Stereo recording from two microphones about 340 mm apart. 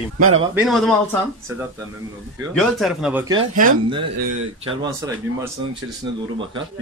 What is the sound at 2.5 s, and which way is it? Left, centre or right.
Speech, centre.